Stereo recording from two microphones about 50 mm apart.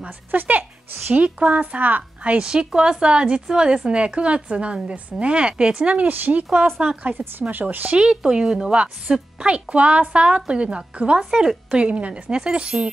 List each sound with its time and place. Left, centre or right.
0.3 s a woman's voice: right
1.2 s a woman's voice: right
2.4 s a woman's voice: centre
6.0 s a woman's voice: right
8.0 s a woman's voice: centre
11.7 s a woman's voice: right